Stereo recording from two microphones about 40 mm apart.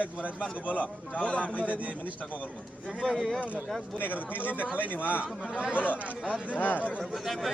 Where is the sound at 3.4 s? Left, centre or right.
Right.